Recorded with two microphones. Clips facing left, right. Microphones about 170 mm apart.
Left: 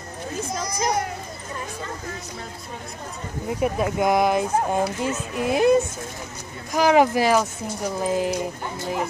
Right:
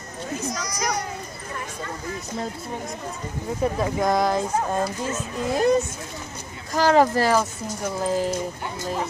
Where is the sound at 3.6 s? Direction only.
15° left (ahead or behind).